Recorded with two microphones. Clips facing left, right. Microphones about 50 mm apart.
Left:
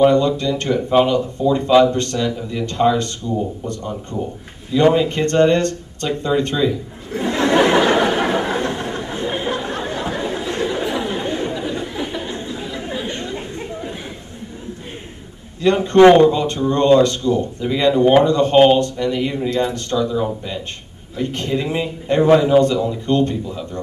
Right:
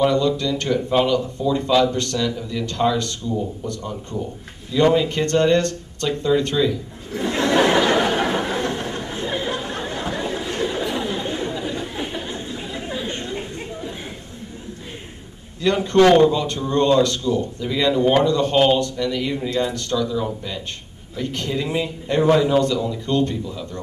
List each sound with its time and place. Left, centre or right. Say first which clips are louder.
0.4 s speech: left 2 dB; left
5.1 s speech: left 3 dB; left
6.7 s a sound: left 3 dB; left
11.1 s chatter: left 3 dB; left
15.6 s speech: left 5 dB; left
22.6 s speech: left 4 dB; left